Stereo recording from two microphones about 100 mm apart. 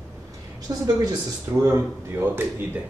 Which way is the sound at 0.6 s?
40° right (ahead or behind).